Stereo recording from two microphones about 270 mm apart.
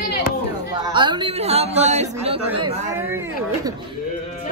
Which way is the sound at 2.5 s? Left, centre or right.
Centre.